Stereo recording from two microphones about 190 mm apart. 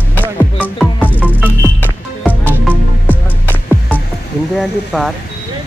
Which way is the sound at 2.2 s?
10° left (ahead or behind).